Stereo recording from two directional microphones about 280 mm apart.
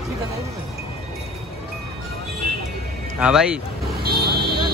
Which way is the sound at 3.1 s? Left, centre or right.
Centre.